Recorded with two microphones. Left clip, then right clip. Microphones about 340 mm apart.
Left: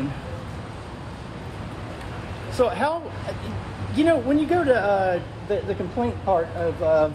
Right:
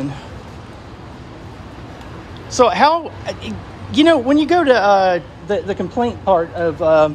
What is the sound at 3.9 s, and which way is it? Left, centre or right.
Speech, right.